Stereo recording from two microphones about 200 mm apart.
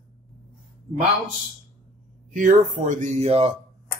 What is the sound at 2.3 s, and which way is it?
Speech, 40° right (ahead or behind).